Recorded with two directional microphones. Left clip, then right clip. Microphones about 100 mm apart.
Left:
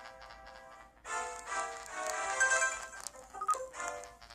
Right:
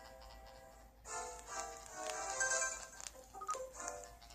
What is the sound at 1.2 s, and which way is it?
Music, 35° left (ahead or behind).